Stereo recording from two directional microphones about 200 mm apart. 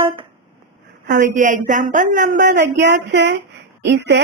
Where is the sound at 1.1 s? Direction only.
40° right (ahead or behind).